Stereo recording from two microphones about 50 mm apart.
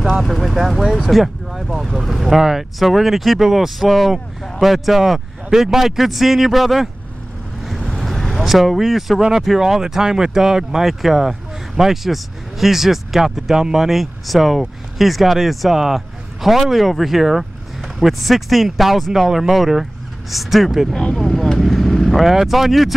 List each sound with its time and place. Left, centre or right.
0.2 s vehicle: centre
1.0 s speech: centre
7.6 s vehicle: centre
8.0 s speech: centre
20.9 s speech: centre
21.2 s vehicle: centre
22.2 s speech: centre